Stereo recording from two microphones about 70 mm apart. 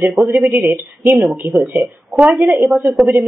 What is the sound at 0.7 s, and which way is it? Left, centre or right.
Speech, right.